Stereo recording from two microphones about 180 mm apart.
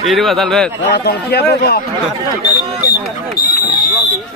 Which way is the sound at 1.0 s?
60° left (ahead or behind).